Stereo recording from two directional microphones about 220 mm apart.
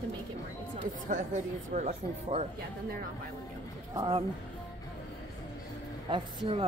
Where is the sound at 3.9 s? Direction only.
20° right (ahead or behind).